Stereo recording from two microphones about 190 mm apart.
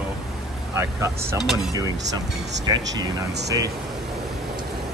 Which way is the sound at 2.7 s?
20° right (ahead or behind).